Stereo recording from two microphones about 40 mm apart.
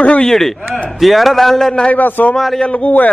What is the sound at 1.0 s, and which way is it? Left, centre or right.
Speech, centre.